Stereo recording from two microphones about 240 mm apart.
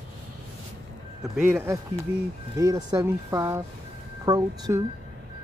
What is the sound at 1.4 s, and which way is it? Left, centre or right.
Speech, centre.